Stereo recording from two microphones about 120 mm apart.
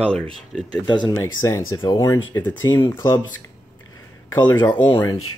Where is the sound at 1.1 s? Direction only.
25° left (ahead or behind).